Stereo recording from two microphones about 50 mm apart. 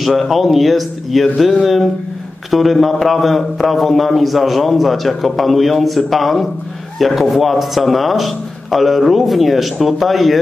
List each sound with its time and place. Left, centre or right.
0.0 s a man's voice: centre